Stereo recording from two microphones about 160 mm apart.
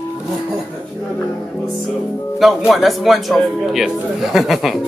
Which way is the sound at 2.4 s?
Centre (ahead or behind).